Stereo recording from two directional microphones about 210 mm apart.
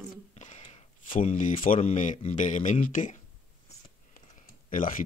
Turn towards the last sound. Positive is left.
turn(degrees=40)  # may be behind; listen again after turning